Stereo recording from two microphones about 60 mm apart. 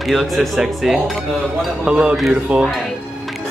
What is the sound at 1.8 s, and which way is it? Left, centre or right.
Speech, right.